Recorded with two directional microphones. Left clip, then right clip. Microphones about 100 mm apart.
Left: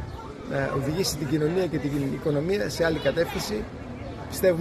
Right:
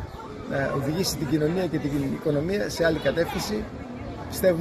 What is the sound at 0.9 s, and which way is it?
Speech, 50° left (ahead or behind).